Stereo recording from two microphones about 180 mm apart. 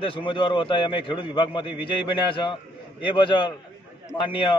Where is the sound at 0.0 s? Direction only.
30° left (ahead or behind).